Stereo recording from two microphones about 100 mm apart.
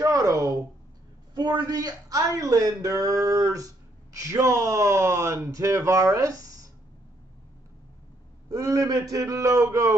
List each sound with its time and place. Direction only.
0.0 s a sound: 30° right (ahead or behind)
1.3 s speech: 45° right (ahead or behind)
8.5 s a man's voice: 35° right (ahead or behind)